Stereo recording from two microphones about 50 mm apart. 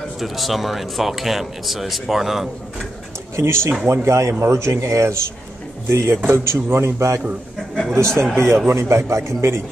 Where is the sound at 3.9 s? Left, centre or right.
Right.